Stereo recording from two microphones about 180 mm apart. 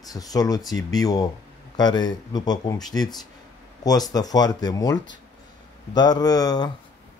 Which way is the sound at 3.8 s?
20° left (ahead or behind).